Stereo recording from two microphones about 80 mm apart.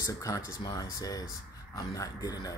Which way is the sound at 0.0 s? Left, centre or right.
Left.